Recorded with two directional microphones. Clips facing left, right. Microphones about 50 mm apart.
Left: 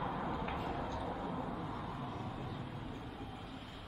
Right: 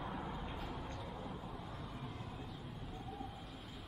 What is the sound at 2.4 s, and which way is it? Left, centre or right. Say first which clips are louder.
Vehicle: left 5 dB; left.